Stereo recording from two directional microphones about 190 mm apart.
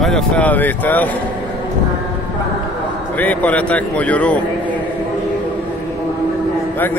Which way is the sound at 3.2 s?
10° left (ahead or behind).